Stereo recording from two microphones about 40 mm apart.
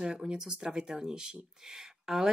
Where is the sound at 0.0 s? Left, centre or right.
Centre.